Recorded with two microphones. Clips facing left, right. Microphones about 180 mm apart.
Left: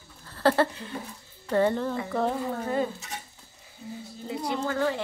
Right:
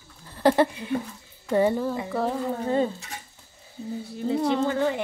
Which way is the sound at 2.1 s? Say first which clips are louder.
Right 1 dB; 5° right (ahead or behind).